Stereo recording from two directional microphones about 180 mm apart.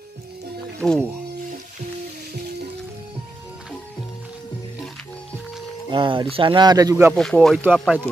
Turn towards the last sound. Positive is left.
turn(degrees=-10)  # may be behind; listen again after turning